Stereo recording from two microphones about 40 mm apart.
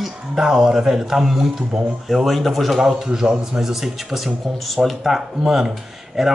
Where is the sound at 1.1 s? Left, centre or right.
Centre.